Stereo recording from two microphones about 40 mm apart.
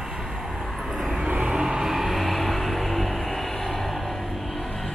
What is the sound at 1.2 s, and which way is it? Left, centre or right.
Vehicle, right.